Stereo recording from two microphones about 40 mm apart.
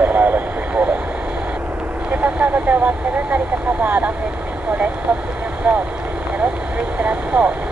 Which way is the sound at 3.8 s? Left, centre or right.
Right.